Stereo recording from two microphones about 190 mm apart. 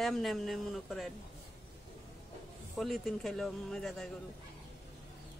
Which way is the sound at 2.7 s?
Centre (ahead or behind).